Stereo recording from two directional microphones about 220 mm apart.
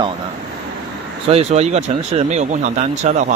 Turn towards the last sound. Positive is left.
turn(degrees=-35)  # may be behind; listen again after turning